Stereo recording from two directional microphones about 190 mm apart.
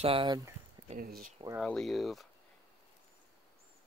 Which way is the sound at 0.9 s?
50° right (ahead or behind).